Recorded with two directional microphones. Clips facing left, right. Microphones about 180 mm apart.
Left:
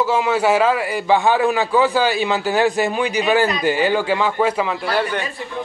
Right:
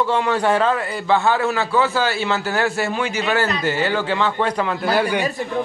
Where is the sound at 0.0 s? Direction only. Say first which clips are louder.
Left 1 dB; 5° left (ahead or behind).